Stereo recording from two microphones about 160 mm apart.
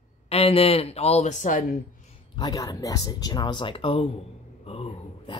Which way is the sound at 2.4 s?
25° left (ahead or behind).